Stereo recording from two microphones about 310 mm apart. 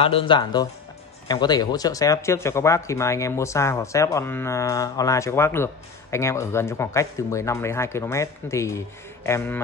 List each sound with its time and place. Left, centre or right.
0.0 s speech: centre